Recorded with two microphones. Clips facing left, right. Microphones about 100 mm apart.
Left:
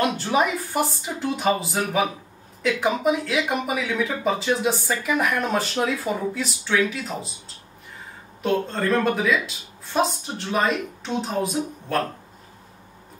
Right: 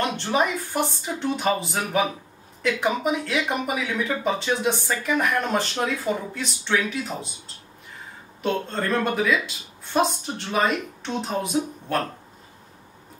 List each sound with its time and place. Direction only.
0.0 s speech: 5° left (ahead or behind)